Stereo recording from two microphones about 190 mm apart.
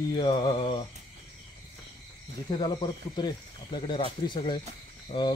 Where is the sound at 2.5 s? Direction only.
25° left (ahead or behind).